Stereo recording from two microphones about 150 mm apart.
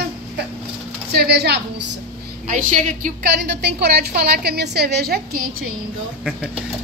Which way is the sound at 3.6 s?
90° right.